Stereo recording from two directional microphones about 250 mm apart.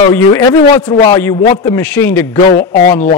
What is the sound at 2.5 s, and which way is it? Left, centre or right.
Speech, left.